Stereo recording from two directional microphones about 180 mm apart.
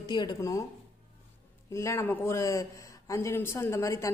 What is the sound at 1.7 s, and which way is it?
A man's voice, 15° left (ahead or behind).